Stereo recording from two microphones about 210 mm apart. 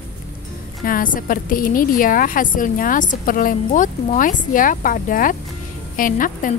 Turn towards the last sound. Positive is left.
turn(degrees=40)  # may be behind; listen again after turning